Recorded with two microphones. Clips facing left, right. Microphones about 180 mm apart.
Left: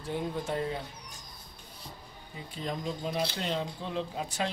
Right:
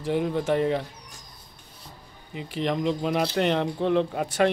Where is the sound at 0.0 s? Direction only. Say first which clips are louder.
Right 8 dB; 90° right.